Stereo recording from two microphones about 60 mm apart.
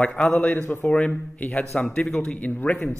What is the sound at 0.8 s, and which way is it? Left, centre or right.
Speech, centre.